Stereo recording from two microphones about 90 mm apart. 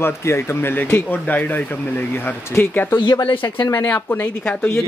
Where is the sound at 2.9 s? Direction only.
55° left (ahead or behind).